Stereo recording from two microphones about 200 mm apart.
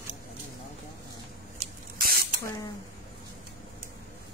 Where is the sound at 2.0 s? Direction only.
50° right (ahead or behind).